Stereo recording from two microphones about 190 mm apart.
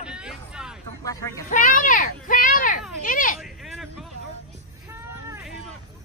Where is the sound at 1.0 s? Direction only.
20° left (ahead or behind).